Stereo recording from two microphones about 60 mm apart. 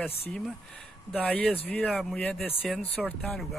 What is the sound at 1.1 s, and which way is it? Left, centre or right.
Speech, left.